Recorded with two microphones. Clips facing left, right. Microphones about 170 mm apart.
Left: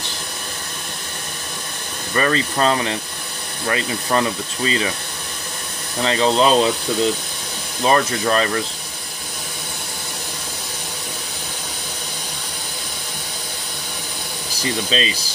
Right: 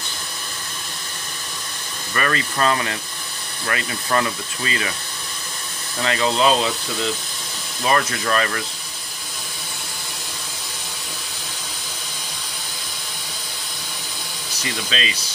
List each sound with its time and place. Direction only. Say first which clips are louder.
2.1 s speech: left 4 dB; 25° left (ahead or behind)
6.0 s speech: left 3 dB; 30° left (ahead or behind)
7.8 s speech: left 4 dB; 30° left (ahead or behind)
14.6 s speech: left 5 dB; 35° left (ahead or behind)